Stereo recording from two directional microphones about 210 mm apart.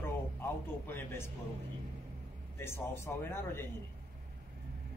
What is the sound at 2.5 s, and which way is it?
Speech, 10° left (ahead or behind).